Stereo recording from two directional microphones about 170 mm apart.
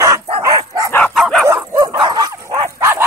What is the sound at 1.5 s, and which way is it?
Dog, 20° right (ahead or behind).